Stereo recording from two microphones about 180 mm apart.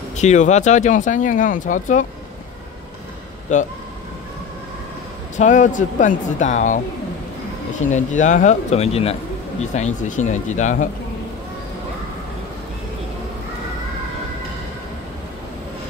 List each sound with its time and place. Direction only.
0.2 s speech: 40° left (ahead or behind)
3.5 s speech: 45° left (ahead or behind)
5.4 s speech: 45° left (ahead or behind)
7.9 s speech: 45° left (ahead or behind)